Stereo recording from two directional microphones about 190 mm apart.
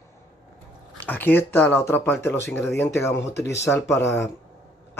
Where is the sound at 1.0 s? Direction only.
10° left (ahead or behind).